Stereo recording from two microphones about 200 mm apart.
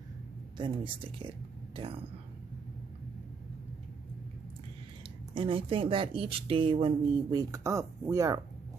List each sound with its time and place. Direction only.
0.6 s speech: 25° right (ahead or behind)
5.3 s speech: 25° right (ahead or behind)